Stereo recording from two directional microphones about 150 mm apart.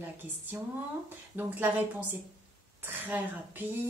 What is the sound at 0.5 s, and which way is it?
A woman's voice, 15° right (ahead or behind).